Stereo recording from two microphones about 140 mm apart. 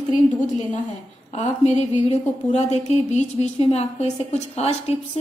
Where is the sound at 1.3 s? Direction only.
55° left (ahead or behind).